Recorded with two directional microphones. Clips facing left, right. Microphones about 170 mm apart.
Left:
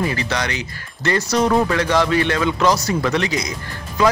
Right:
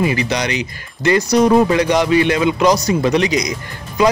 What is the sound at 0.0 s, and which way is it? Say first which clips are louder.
A man's voice: right 4 dB; 15° right (ahead or behind).